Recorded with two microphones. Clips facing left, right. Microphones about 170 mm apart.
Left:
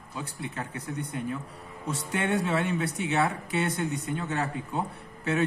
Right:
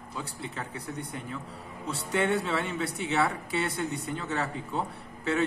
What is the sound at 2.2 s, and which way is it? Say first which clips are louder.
Speech: left 5 dB; 15° left (ahead or behind).